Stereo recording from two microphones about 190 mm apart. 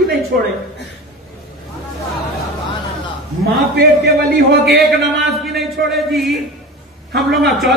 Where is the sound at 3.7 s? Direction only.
55° right (ahead or behind).